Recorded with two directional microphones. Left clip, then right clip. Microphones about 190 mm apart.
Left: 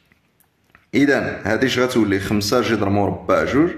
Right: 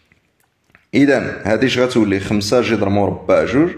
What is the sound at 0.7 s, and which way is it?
Speech, 15° right (ahead or behind).